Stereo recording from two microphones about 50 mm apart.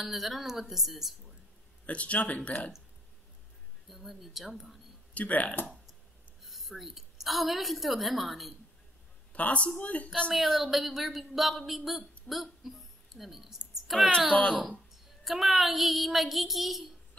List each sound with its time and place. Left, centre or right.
0.0 s speech: centre
1.9 s speech: left
3.9 s speech: centre
5.1 s speech: left
6.4 s a woman's voice: centre
9.3 s a woman's voice: left
10.3 s speech: centre
13.7 s a sound: centre
15.2 s speech: centre